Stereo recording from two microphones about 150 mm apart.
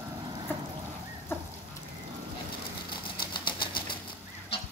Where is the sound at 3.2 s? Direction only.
30° left (ahead or behind).